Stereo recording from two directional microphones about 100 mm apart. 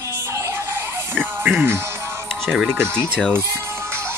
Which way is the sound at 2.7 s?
20° right (ahead or behind).